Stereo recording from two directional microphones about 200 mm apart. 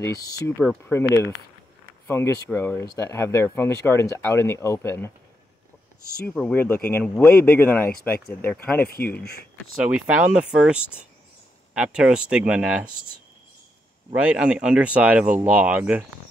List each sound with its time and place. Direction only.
0.0 s speech: 15° left (ahead or behind)
6.2 s speech: 5° left (ahead or behind)
9.2 s speech: 55° left (ahead or behind)
9.9 s speech: 5° right (ahead or behind)
14.2 s speech: 5° right (ahead or behind)